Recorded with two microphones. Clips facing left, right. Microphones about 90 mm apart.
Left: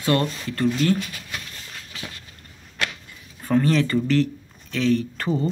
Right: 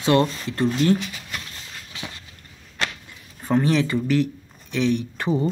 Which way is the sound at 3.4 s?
15° right (ahead or behind).